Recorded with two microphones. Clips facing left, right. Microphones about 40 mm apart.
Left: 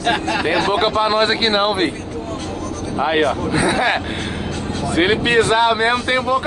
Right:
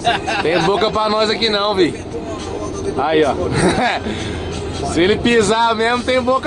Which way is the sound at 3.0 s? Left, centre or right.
Centre.